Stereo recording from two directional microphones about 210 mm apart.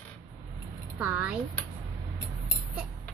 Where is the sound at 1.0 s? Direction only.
5° right (ahead or behind).